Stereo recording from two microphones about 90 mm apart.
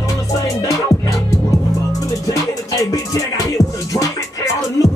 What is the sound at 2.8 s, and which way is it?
Music, 40° left (ahead or behind).